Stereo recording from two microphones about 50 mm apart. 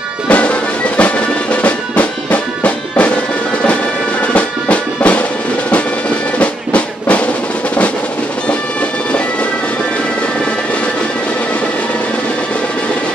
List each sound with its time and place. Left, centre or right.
0.3 s music: left
4.3 s music: left
6.4 s music: left